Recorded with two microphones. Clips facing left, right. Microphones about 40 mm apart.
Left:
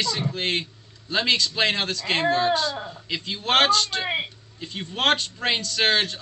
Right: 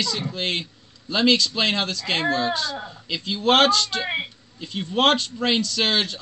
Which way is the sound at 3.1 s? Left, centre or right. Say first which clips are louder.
Right 3 dB; left.